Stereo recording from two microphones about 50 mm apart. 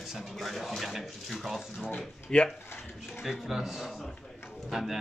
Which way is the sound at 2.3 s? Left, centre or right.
Centre.